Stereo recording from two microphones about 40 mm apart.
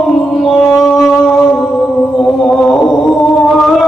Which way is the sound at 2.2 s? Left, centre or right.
Centre.